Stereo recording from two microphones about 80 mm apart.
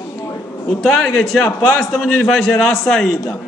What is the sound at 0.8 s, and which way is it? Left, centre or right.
A man's voice, centre.